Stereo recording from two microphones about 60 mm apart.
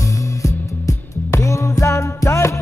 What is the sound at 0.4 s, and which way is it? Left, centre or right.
Music, left.